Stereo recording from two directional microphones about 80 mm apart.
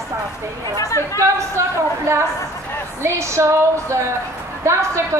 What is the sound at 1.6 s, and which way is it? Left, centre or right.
A woman's voice, right.